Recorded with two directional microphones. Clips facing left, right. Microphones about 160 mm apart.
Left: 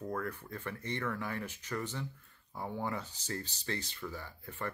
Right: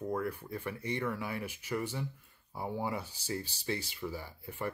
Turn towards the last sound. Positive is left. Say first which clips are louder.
# right 2 dB
turn(degrees=-10)  # may be behind; listen again after turning